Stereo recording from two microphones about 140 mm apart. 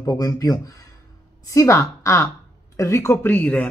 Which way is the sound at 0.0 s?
25° left (ahead or behind).